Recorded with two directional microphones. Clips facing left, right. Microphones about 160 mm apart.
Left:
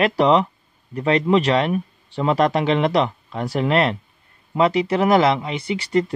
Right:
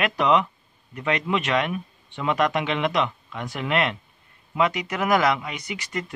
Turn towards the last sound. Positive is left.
turn(degrees=30)  # may be behind; listen again after turning